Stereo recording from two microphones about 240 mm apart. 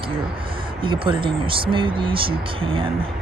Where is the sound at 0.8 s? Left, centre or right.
Right.